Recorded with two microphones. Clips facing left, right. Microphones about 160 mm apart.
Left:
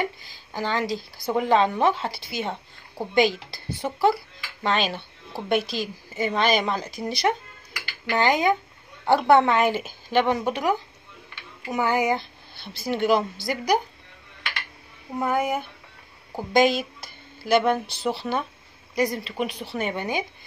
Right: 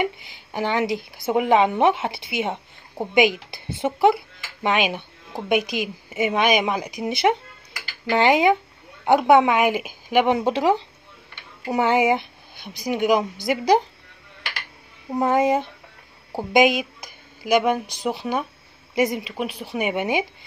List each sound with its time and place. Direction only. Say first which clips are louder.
0.0 s a woman's voice: right 4 dB; 20° right (ahead or behind)
15.1 s a woman's voice: right 5 dB; 25° right (ahead or behind)
16.5 s speech: right 2 dB; 15° right (ahead or behind)
18.9 s a woman's voice: right 3 dB; 20° right (ahead or behind)
19.2 s a woman's voice: even; 5° right (ahead or behind)